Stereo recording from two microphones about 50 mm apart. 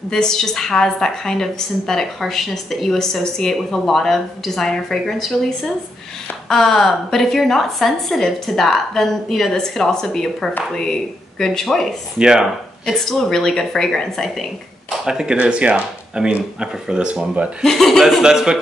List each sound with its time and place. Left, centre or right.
0.1 s a woman's voice: centre
6.5 s a woman's voice: centre
12.2 s a man's voice: centre
12.8 s a woman's voice: centre
15.0 s a man's voice: centre
17.6 s a man's voice: centre
18.2 s a man's voice: centre